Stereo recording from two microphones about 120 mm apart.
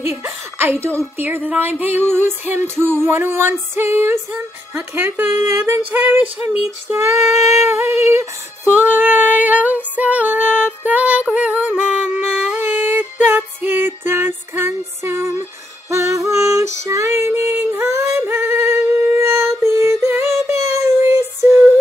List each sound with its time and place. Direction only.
0.2 s a sound: 20° right (ahead or behind)
0.9 s female singing: 15° right (ahead or behind)
7.3 s a sound: 70° left (ahead or behind)
7.7 s female singing: 20° right (ahead or behind)
12.4 s music: 15° right (ahead or behind)
20.7 s child singing: 20° right (ahead or behind)